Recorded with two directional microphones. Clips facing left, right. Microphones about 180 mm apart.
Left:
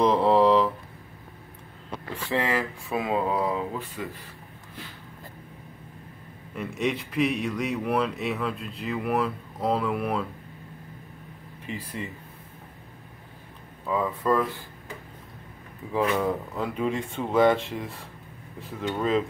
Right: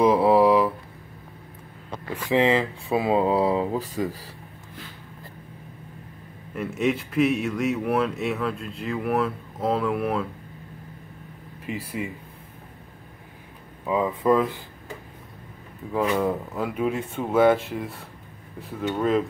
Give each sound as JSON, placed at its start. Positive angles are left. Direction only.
{"t": 0.0, "sound": "speech", "side_deg": -10}
{"t": 2.2, "sound": "speech", "side_deg": -20}
{"t": 6.5, "sound": "speech", "side_deg": -5}
{"t": 11.6, "sound": "speech", "side_deg": -10}
{"t": 13.8, "sound": "speech", "side_deg": -15}
{"t": 15.9, "sound": "speech", "side_deg": 0}